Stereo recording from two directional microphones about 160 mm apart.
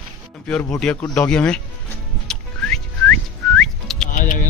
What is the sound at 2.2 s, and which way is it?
Whistling, 5° left (ahead or behind).